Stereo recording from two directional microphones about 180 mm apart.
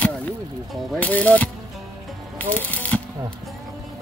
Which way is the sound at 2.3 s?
10° left (ahead or behind).